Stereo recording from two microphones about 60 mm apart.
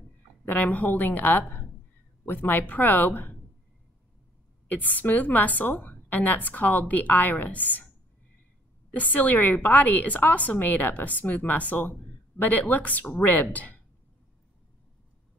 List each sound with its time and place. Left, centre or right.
0.5 s a woman's voice: left
4.6 s a woman's voice: left
8.9 s a woman's voice: left